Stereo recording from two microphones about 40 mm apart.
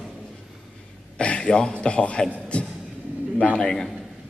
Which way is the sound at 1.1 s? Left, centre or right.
Left.